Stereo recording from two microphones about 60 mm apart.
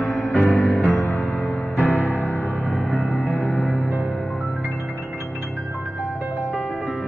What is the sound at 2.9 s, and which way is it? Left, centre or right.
Music, centre.